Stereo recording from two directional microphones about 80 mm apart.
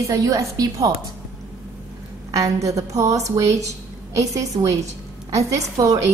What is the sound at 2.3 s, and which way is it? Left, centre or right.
A woman's voice, right.